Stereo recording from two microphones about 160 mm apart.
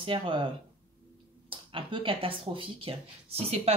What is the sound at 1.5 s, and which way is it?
Speech, 35° right (ahead or behind).